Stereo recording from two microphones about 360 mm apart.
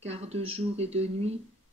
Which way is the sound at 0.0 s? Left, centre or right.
Centre.